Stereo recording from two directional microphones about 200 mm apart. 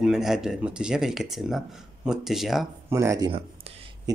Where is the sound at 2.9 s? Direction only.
15° right (ahead or behind).